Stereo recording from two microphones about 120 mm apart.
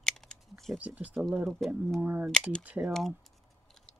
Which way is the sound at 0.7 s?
10° right (ahead or behind).